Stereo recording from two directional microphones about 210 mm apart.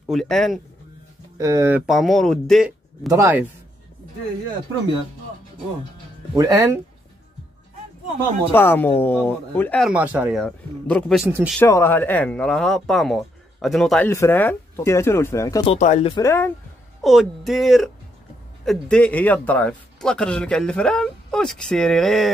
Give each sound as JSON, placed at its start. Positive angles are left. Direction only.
{"t": 0.1, "sound": "speech", "side_deg": 0}
{"t": 1.4, "sound": "speech", "side_deg": -15}
{"t": 1.9, "sound": "speech", "side_deg": 0}
{"t": 3.1, "sound": "speech", "side_deg": -10}
{"t": 6.3, "sound": "speech", "side_deg": -15}
{"t": 8.5, "sound": "speech", "side_deg": 10}
{"t": 11.6, "sound": "speech", "side_deg": 10}
{"t": 15.6, "sound": "speech", "side_deg": 30}
{"t": 16.1, "sound": "speech", "side_deg": 15}
{"t": 17.0, "sound": "speech", "side_deg": 0}